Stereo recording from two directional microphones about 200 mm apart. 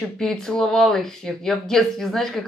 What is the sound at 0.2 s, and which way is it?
Speech, 5° left (ahead or behind).